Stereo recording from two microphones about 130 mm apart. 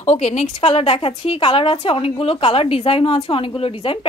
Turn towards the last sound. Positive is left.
turn(degrees=45)  # may be behind; listen again after turning